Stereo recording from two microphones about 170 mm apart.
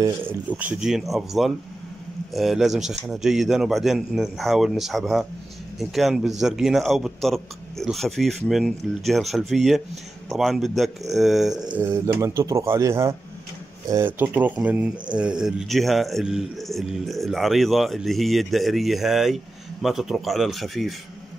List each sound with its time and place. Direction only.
0.0 s speech: 10° right (ahead or behind)
11.8 s speech: 15° right (ahead or behind); by 20.9 s centre (ahead or behind)